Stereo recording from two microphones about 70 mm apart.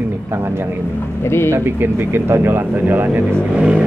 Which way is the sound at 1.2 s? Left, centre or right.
Left.